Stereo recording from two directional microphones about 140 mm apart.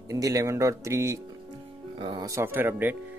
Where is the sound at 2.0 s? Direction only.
35° right (ahead or behind).